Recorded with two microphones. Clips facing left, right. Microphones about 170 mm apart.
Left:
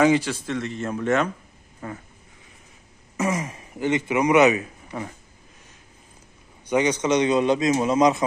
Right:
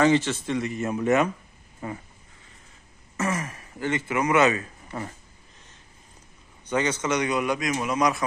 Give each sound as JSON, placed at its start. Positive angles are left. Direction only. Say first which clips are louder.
{"t": 0.0, "sound": "a man's voice", "louder": "left 2 dB", "side_deg": 10}
{"t": 0.3, "sound": "a man's voice", "louder": "right 1 dB", "side_deg": -5}
{"t": 3.2, "sound": "speech", "louder": "left 3 dB", "side_deg": 15}
{"t": 6.7, "sound": "a man's voice", "louder": "left 5 dB", "side_deg": 15}